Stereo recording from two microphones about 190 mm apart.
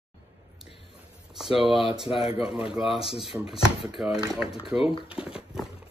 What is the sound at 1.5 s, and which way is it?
Speech, 30° left (ahead or behind).